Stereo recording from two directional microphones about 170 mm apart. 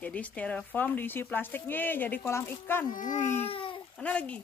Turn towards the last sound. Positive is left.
turn(degrees=10)  # may be behind; listen again after turning